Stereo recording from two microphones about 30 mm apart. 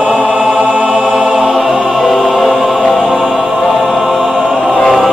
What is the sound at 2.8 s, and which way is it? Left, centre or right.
Choir, centre.